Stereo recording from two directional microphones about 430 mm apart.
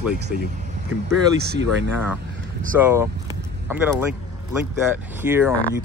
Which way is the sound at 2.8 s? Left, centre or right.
Centre.